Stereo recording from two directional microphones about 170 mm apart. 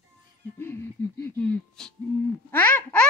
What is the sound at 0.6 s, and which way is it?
Speech, 10° left (ahead or behind).